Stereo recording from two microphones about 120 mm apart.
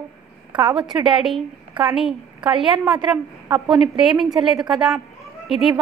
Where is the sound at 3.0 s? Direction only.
40° right (ahead or behind).